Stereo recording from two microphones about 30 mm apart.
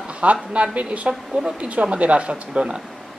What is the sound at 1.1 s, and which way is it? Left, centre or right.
Speech, right.